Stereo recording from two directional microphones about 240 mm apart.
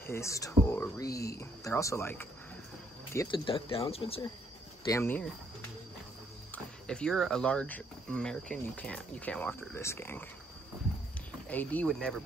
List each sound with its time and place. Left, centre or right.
0.0 s speech: centre
4.8 s speech: centre
6.5 s speech: centre
11.4 s speech: centre